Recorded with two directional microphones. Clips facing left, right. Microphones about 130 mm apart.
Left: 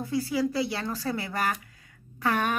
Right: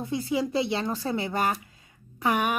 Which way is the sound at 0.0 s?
20° right (ahead or behind).